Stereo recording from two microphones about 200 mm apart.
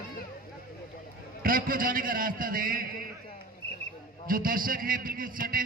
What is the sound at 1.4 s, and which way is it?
A man's voice, 45° right (ahead or behind).